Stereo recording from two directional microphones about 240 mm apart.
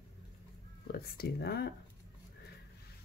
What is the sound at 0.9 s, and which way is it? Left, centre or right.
Speech, left.